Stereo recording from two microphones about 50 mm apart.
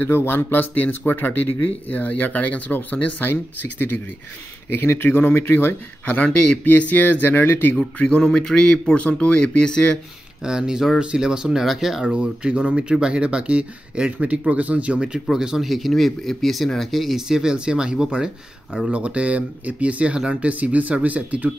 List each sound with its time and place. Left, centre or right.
0.3 s speech: left
4.7 s speech: left
6.0 s speech: left
8.2 s a man's voice: centre
10.4 s speech: centre
12.1 s speech: right
15.3 s speech: centre
17.3 s speech: centre; by 21.5 s right